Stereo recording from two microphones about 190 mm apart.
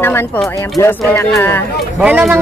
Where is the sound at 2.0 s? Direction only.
5° right (ahead or behind).